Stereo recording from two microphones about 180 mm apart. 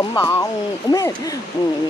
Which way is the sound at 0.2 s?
15° left (ahead or behind).